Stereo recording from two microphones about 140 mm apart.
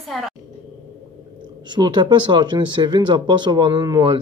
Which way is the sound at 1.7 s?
30° right (ahead or behind).